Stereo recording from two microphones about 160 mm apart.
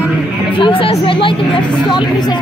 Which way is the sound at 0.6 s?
35° left (ahead or behind).